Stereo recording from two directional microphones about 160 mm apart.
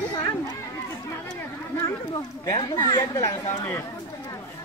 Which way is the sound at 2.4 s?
25° left (ahead or behind).